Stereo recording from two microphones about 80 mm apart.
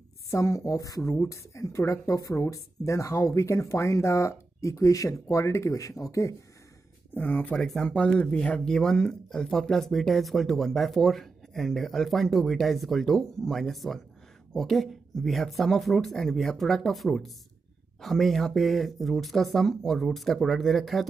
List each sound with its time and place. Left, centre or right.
0.3 s speech: left
7.2 s speech: left
7.5 s speech: centre